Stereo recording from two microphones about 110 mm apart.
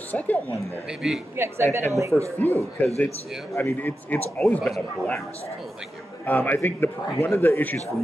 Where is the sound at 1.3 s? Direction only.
25° right (ahead or behind).